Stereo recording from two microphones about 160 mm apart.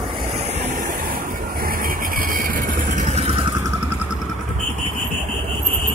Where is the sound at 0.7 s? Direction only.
55° right (ahead or behind).